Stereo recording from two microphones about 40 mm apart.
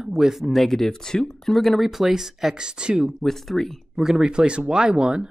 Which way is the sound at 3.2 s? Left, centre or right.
Centre.